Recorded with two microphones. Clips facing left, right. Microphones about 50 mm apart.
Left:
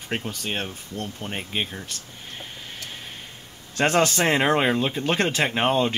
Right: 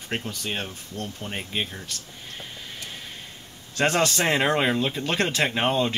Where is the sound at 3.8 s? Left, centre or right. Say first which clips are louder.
Left 2 dB; centre.